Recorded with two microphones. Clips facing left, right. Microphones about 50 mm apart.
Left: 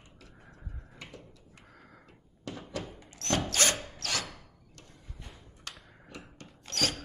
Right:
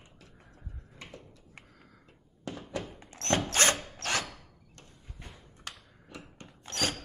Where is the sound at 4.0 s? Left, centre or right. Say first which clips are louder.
Right 3 dB; right.